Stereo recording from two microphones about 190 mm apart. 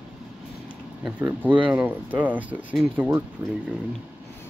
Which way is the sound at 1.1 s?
10° right (ahead or behind).